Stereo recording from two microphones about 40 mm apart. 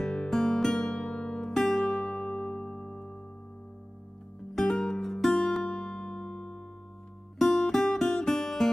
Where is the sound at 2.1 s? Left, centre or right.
Left.